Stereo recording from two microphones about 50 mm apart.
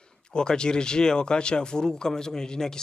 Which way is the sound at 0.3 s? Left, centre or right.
Centre.